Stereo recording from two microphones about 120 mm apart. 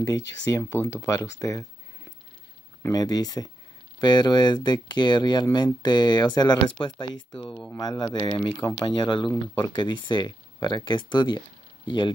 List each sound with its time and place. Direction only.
0.0 s speech: 25° left (ahead or behind)
2.9 s speech: 30° left (ahead or behind)
7.3 s speech: 5° left (ahead or behind)
7.8 s speech: 35° left (ahead or behind)